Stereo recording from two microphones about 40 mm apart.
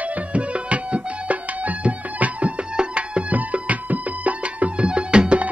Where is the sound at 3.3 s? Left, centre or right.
Right.